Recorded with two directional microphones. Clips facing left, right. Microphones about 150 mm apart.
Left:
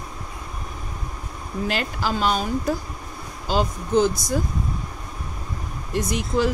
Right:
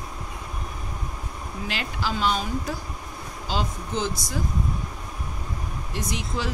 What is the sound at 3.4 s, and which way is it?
Speech, 45° left (ahead or behind).